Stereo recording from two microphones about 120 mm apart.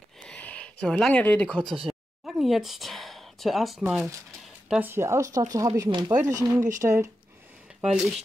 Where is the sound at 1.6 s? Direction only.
45° right (ahead or behind).